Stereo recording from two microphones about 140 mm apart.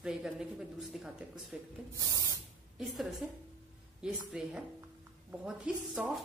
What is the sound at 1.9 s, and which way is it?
Spray, 25° right (ahead or behind).